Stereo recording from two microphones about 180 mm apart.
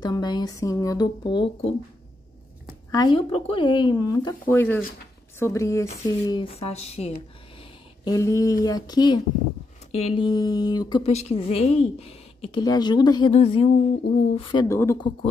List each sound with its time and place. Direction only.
0.0 s speech: 25° left (ahead or behind)
2.9 s speech: 25° left (ahead or behind)
4.5 s a woman's voice: 10° left (ahead or behind); by 7.1 s 35° left (ahead or behind)
8.0 s speech: 20° left (ahead or behind)
9.8 s speech: 35° left (ahead or behind)
11.1 s a woman's voice: 35° left (ahead or behind)
13.3 s a woman's voice: 35° left (ahead or behind)
14.7 s a woman's voice: 15° left (ahead or behind)